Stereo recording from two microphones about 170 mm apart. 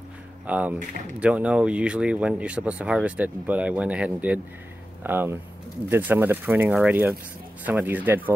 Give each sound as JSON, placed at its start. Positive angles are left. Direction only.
{"t": 0.5, "sound": "speech", "side_deg": -10}